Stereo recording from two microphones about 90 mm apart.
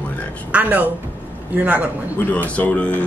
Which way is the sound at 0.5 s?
15° right (ahead or behind).